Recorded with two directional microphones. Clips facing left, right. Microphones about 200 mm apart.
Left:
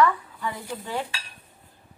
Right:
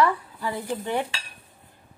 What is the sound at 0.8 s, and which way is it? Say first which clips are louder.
Speech: right 2 dB; 20° right (ahead or behind).